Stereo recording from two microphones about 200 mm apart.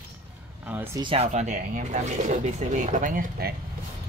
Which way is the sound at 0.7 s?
10° right (ahead or behind).